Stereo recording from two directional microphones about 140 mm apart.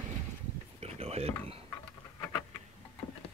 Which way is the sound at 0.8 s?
50° right (ahead or behind).